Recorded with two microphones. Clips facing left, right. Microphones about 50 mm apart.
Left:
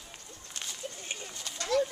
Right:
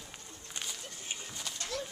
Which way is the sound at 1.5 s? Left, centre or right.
Left.